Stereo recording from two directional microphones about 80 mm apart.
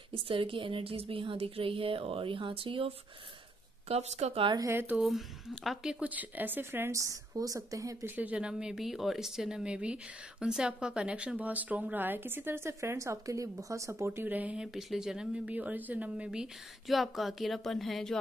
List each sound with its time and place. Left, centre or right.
0.1 s a woman's voice: right
5.0 s speech: centre; by 6.9 s right
6.9 s a woman's voice: right
8.2 s a woman's voice: centre; by 14.2 s right
14.2 s a woman's voice: centre
14.7 s speech: centre
16.3 s speech: centre